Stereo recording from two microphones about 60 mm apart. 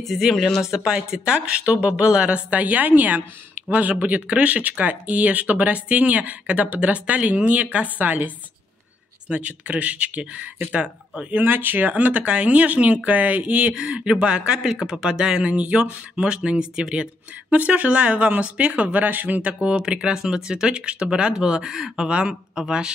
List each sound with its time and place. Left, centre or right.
0.0 s speech: centre
0.8 s speech: centre
9.3 s speech: right
11.4 s speech: right; by 22.9 s centre